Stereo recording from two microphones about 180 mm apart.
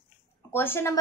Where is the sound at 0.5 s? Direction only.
15° left (ahead or behind).